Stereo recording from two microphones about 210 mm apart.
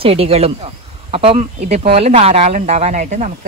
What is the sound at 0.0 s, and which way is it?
Speech, 30° right (ahead or behind).